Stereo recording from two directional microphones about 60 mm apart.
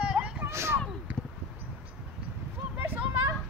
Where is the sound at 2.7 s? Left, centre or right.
Right.